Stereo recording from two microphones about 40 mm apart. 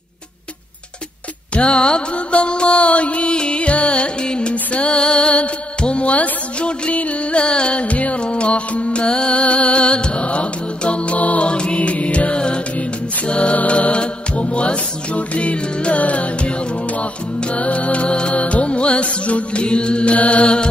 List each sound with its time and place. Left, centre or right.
1.5 s music: left
20.2 s mantra: left